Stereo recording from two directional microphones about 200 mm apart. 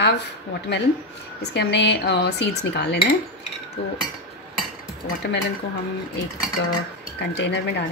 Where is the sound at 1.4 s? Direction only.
60° left (ahead or behind).